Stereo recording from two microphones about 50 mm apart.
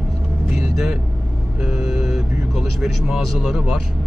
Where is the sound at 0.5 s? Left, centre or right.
Centre.